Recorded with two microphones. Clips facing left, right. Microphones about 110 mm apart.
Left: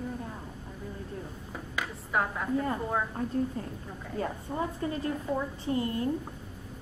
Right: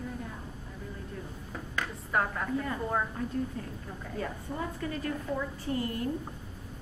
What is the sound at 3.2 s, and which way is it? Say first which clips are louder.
A woman's voice: left 3 dB; 30° left (ahead or behind).